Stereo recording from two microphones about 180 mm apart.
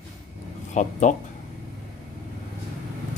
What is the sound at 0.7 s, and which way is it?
Speech, 40° left (ahead or behind).